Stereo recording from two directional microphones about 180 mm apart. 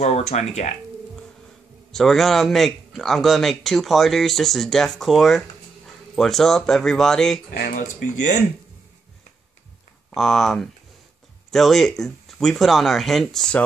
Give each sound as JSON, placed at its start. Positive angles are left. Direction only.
{"t": 0.0, "sound": "speech", "side_deg": 35}
{"t": 1.9, "sound": "a man's voice", "side_deg": 0}
{"t": 7.5, "sound": "speech", "side_deg": 45}
{"t": 10.1, "sound": "a man's voice", "side_deg": 0}